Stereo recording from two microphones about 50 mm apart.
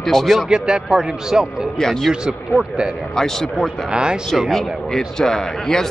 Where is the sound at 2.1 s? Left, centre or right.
Centre.